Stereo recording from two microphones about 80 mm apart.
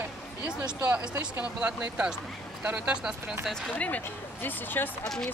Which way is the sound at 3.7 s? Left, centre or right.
Centre.